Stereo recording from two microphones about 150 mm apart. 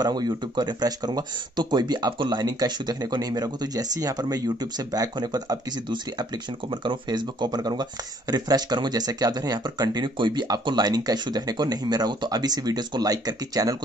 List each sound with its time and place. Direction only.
0.0 s speech: 25° right (ahead or behind)